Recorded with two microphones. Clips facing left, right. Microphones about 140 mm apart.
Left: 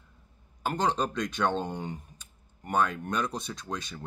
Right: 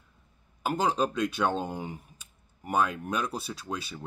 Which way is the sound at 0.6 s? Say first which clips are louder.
Right 1 dB; 5° right (ahead or behind).